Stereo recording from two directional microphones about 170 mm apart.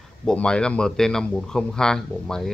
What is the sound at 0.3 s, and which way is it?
Speech, 5° left (ahead or behind).